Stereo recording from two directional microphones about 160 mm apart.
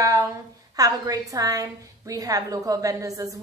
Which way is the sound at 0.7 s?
20° right (ahead or behind).